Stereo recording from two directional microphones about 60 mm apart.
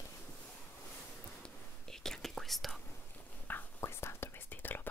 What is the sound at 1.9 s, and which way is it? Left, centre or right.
Whispering, centre.